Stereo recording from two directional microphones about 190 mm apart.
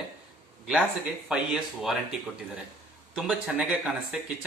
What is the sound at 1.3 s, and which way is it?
Speech, 5° right (ahead or behind).